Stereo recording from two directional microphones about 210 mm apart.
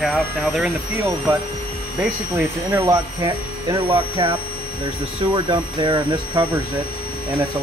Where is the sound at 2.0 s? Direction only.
5° right (ahead or behind).